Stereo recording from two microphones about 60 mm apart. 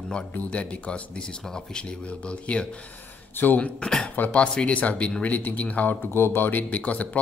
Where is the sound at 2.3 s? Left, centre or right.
Centre.